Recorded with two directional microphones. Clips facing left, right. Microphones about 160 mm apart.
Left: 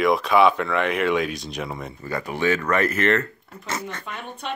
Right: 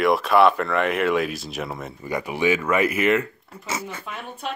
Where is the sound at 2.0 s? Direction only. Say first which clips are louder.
Right 1 dB; 10° right (ahead or behind).